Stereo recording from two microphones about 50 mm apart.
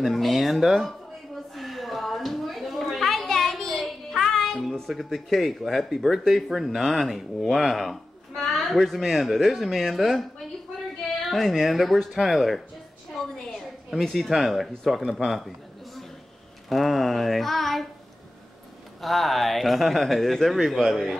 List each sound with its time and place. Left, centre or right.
0.0 s speech: centre
1.5 s a sound: centre
4.8 s speech: centre
11.2 s speech: centre
13.2 s a sound: centre
13.8 s a man's voice: centre
18.9 s speech: centre